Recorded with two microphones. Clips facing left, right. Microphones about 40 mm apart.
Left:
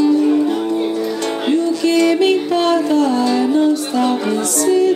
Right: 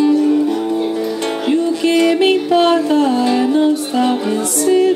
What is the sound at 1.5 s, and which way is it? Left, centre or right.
Music, right.